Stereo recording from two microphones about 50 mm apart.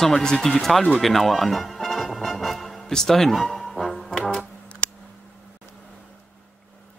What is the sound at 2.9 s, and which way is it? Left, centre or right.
Speech, centre.